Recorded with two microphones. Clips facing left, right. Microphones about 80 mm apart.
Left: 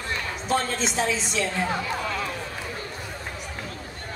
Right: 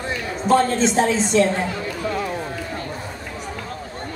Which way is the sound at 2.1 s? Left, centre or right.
Right.